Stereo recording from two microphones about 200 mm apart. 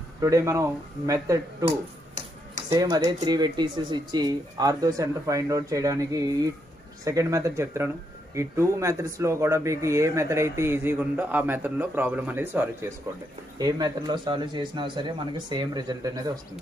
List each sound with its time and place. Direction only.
0.2 s speech: 15° right (ahead or behind)